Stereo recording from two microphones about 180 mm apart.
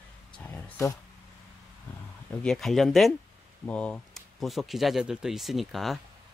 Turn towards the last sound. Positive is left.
turn(degrees=0)  # may be behind; listen again after turning